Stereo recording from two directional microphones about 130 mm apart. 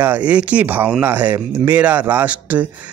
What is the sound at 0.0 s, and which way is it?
Speech, 10° right (ahead or behind).